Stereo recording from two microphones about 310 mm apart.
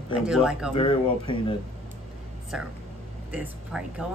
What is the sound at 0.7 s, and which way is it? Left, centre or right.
Speech, centre.